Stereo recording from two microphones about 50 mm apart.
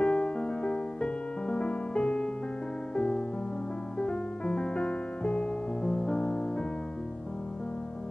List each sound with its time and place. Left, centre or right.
0.0 s music: left